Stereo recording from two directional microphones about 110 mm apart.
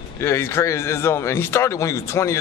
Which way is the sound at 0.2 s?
25° left (ahead or behind).